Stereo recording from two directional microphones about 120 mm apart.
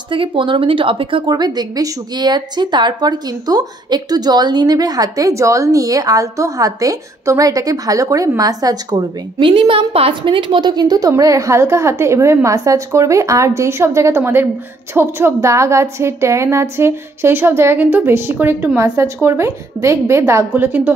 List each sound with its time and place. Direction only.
0.1 s a woman's voice: 45° right (ahead or behind); by 20.9 s 15° right (ahead or behind)